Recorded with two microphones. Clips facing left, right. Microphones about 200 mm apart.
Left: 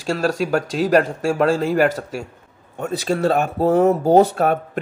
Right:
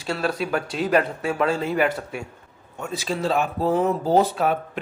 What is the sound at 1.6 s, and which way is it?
Speech, 45° left (ahead or behind).